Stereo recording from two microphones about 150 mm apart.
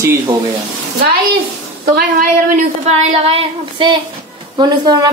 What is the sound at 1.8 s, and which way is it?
Speech, 75° right (ahead or behind).